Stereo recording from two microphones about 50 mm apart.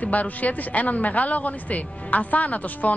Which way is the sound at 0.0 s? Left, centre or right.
Left.